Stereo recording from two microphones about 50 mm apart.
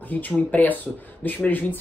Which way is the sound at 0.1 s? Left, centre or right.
Left.